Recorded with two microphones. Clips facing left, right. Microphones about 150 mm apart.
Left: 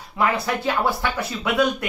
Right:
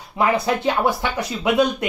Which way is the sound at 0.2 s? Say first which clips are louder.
Right 3 dB; 20° right (ahead or behind).